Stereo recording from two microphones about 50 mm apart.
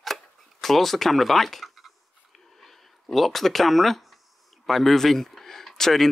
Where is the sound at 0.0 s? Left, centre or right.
Centre.